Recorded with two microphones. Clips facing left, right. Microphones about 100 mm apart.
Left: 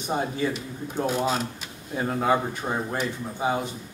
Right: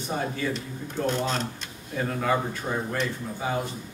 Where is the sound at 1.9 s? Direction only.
20° left (ahead or behind).